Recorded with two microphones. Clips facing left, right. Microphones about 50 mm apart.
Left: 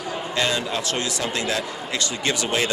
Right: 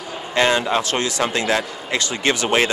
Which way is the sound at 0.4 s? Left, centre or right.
Right.